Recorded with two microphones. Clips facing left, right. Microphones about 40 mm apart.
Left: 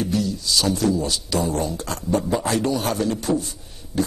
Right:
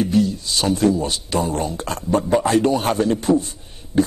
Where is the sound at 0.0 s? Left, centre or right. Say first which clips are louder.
Right 5 dB; right.